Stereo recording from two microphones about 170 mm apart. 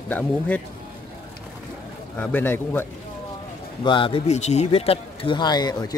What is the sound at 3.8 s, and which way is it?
Speech, 30° left (ahead or behind).